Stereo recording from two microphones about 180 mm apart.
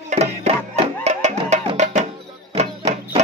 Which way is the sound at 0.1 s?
35° right (ahead or behind).